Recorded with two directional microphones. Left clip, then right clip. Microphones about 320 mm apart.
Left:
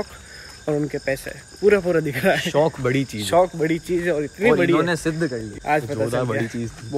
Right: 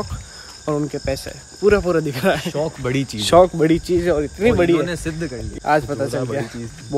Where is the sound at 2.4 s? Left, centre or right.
Centre.